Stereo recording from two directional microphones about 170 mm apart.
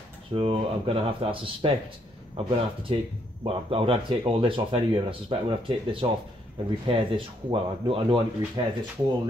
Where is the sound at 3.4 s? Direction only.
35° right (ahead or behind).